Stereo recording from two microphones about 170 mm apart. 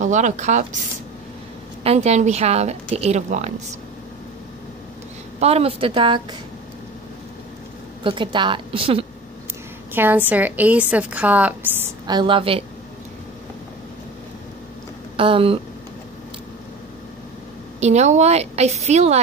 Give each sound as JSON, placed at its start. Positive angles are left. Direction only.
{"t": 0.0, "sound": "a woman's voice", "side_deg": -45}
{"t": 5.4, "sound": "a woman's voice", "side_deg": -35}
{"t": 8.0, "sound": "a woman's voice", "side_deg": -30}
{"t": 9.9, "sound": "a woman's voice", "side_deg": -10}
{"t": 12.1, "sound": "a woman's voice", "side_deg": -25}
{"t": 15.1, "sound": "a woman's voice", "side_deg": -30}
{"t": 17.7, "sound": "a woman's voice", "side_deg": -40}